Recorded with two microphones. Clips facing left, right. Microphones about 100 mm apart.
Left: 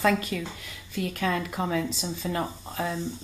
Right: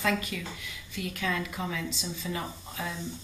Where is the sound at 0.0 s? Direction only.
40° left (ahead or behind).